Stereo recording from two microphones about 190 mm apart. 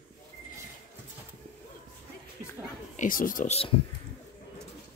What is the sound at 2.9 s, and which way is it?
Speech, 45° left (ahead or behind).